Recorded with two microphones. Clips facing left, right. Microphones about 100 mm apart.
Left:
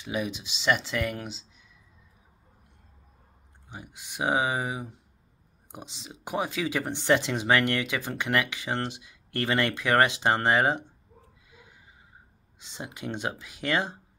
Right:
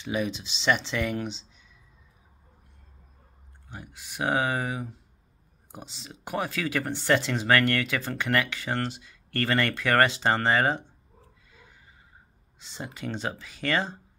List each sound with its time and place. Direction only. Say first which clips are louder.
0.0 s speech: right 2 dB; 5° left (ahead or behind)
3.7 s speech: even; 15° left (ahead or behind)
12.5 s speech: right 1 dB; 15° left (ahead or behind)